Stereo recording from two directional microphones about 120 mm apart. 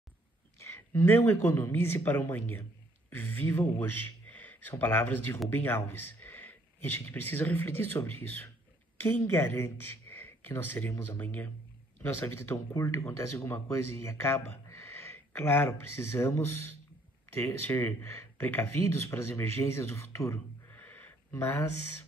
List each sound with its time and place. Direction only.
0.6 s a man's voice: 20° left (ahead or behind)